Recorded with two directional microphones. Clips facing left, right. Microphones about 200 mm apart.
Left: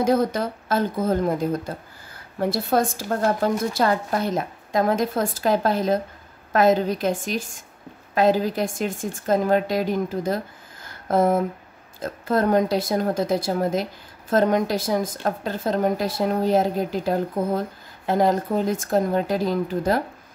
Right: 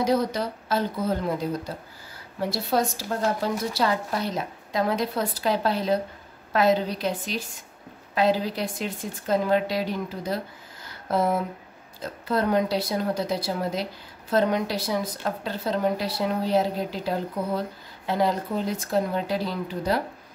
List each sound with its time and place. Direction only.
0.0 s a woman's voice: 50° left (ahead or behind)